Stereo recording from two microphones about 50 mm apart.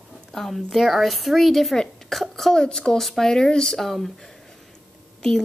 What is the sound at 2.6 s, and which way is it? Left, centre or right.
A child's voice, centre.